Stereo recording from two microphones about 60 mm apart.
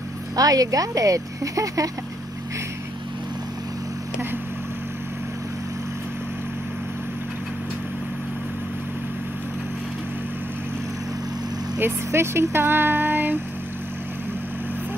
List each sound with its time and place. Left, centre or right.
0.4 s speech: right
11.8 s speech: right